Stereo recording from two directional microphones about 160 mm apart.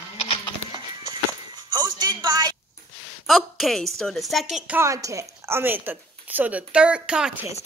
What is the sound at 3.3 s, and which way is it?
A woman's voice, centre (ahead or behind).